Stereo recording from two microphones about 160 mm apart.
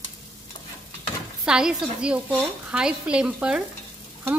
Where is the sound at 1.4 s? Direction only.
5° right (ahead or behind).